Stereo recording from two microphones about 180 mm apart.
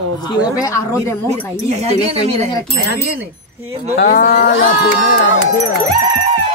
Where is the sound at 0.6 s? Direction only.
20° left (ahead or behind).